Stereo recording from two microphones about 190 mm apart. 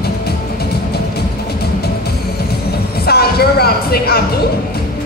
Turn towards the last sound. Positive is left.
turn(degrees=55)  # may be behind; listen again after turning